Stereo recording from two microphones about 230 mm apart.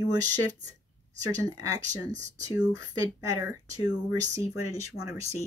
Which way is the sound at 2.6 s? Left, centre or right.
Centre.